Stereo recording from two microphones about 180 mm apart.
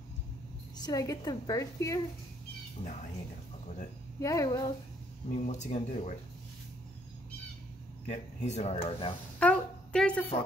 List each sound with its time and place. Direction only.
0.7 s a woman's voice: 20° left (ahead or behind)
2.8 s speech: 45° left (ahead or behind)
4.2 s a woman's voice: 20° left (ahead or behind)
5.4 s speech: 40° left (ahead or behind)
8.1 s speech: 40° left (ahead or behind)
9.4 s a sound: 5° left (ahead or behind)